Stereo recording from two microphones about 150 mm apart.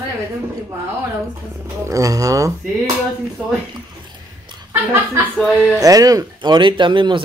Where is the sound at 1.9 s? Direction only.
20° right (ahead or behind).